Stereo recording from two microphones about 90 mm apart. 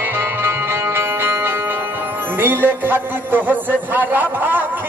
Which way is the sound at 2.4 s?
20° right (ahead or behind).